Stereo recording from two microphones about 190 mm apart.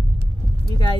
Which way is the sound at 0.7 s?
25° left (ahead or behind).